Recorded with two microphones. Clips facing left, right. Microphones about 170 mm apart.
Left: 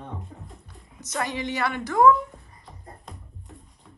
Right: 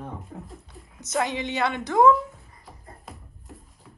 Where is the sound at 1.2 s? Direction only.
20° right (ahead or behind).